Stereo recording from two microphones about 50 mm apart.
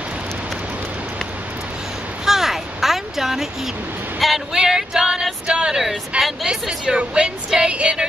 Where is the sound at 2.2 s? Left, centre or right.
Centre.